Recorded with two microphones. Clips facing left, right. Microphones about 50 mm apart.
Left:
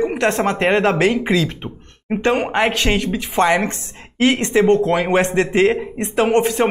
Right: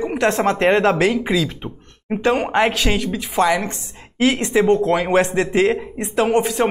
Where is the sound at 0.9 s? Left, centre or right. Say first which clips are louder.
Left 1 dB; left.